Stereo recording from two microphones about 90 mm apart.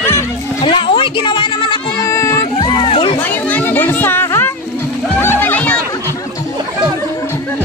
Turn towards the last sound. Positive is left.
turn(degrees=15)  # may be behind; listen again after turning